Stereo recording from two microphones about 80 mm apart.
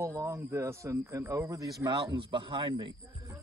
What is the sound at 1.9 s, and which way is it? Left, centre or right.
Speech, right.